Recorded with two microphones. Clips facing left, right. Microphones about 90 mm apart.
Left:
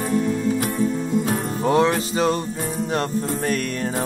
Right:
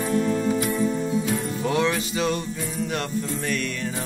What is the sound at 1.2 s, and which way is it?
Music, 40° left (ahead or behind).